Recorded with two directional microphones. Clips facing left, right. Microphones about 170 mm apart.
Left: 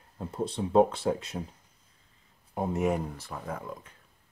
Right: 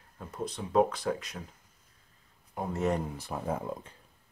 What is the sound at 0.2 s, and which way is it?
Speech, 30° left (ahead or behind).